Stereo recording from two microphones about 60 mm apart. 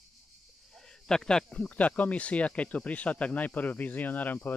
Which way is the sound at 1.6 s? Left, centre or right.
Left.